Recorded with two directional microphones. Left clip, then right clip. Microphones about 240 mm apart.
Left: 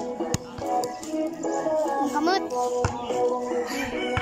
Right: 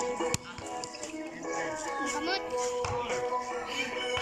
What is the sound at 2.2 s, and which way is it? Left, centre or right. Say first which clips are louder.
Music: left 11 dB; left.